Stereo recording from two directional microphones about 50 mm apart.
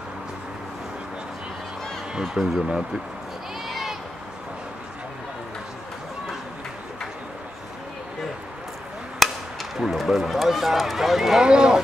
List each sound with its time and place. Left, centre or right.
2.1 s speech: centre
3.6 s a sound: centre
9.2 s speech: centre
11.4 s speech: centre